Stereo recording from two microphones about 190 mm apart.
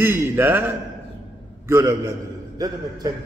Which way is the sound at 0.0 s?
10° right (ahead or behind).